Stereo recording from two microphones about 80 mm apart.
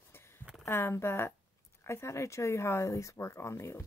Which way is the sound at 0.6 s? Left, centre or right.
Left.